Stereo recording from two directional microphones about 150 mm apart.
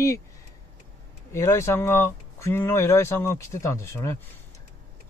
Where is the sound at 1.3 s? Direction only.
20° left (ahead or behind).